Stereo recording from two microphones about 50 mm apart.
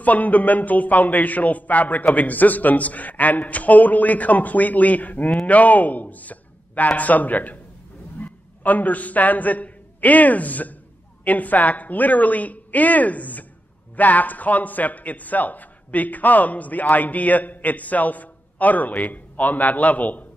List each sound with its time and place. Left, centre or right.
0.0 s a man's voice: left